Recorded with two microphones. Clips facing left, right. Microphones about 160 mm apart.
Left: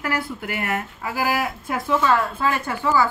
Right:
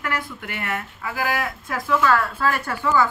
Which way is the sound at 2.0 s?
15° left (ahead or behind).